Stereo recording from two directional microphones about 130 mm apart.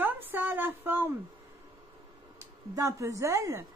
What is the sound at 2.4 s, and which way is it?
Speech, 25° right (ahead or behind).